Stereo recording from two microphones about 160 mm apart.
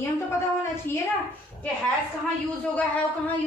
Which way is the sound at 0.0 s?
15° left (ahead or behind).